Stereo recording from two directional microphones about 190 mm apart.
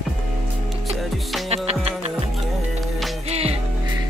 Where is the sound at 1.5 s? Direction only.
35° right (ahead or behind).